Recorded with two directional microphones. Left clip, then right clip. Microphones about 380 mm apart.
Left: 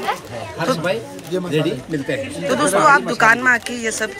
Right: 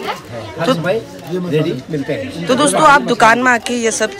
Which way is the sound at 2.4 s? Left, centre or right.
Centre.